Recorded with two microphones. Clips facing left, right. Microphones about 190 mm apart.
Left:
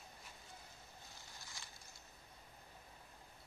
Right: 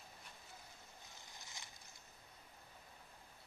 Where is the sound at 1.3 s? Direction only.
20° right (ahead or behind).